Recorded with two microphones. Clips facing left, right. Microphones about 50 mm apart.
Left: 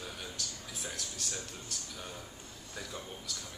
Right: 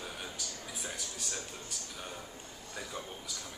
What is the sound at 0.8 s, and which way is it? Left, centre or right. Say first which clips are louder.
Speech: left 1 dB; centre.